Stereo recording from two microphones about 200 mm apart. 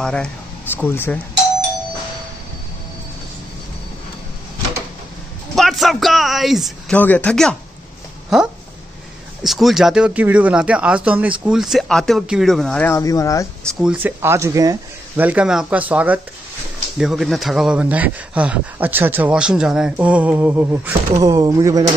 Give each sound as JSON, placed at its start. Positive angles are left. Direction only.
{"t": 0.0, "sound": "speech", "side_deg": 5}
{"t": 5.6, "sound": "speech", "side_deg": 0}
{"t": 12.9, "sound": "speech", "side_deg": 15}
{"t": 13.7, "sound": "speech", "side_deg": 0}
{"t": 14.0, "sound": "speech", "side_deg": -10}